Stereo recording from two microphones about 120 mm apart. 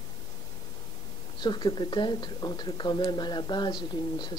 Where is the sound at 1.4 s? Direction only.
40° left (ahead or behind).